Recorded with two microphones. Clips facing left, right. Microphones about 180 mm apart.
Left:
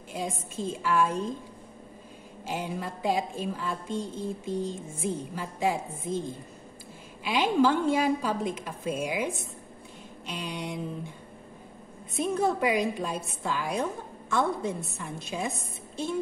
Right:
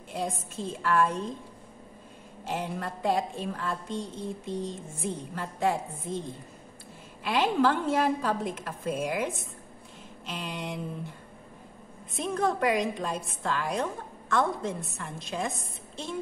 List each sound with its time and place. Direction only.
0.1 s a woman's voice: centre (ahead or behind)
2.4 s a woman's voice: centre (ahead or behind)
12.1 s a woman's voice: 5° left (ahead or behind)